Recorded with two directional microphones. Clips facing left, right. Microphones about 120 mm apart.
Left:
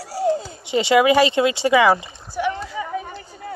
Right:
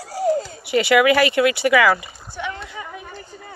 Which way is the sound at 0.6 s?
25° left (ahead or behind).